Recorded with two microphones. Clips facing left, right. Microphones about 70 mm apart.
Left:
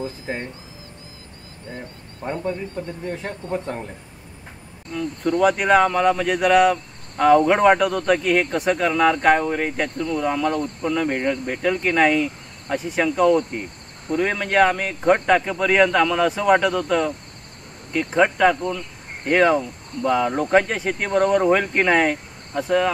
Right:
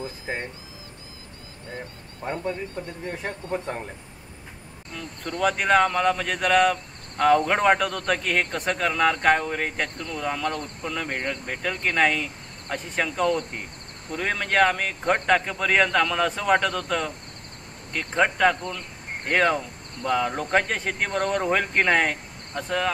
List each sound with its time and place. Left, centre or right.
0.3 s a man's voice: centre
2.2 s speech: centre
2.8 s a man's voice: centre
4.9 s speech: centre